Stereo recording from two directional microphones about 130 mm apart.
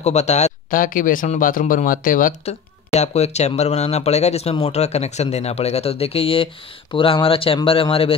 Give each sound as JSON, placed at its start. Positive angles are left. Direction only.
{"t": 0.0, "sound": "speech", "side_deg": 60}
{"t": 2.4, "sound": "speech", "side_deg": 55}